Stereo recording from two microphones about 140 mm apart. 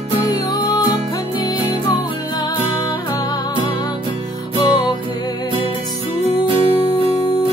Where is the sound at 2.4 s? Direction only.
25° left (ahead or behind).